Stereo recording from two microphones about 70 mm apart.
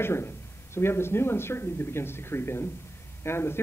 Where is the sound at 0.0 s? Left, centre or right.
Left.